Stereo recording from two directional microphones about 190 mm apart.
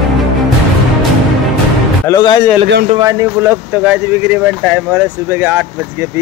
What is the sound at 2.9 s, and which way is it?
Speech, 15° right (ahead or behind).